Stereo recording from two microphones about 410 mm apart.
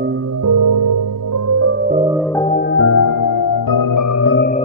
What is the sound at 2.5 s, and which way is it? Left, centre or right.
Music, left.